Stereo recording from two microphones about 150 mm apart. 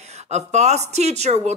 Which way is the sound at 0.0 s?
50° right (ahead or behind).